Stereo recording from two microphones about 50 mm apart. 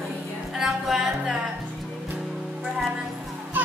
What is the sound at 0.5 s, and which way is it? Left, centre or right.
Music, centre.